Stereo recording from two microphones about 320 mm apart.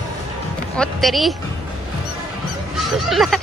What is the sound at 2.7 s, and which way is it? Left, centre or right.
Honk, centre.